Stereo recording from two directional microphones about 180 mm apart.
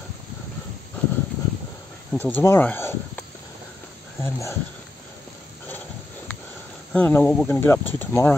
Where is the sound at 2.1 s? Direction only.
10° left (ahead or behind).